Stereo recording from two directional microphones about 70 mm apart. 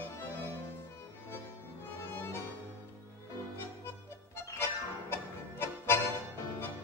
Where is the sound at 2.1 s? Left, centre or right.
Left.